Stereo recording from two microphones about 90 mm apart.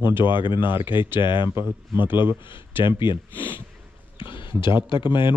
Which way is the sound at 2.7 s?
60° left (ahead or behind).